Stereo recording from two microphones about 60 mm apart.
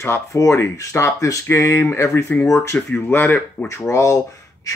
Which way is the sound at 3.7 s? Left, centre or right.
Left.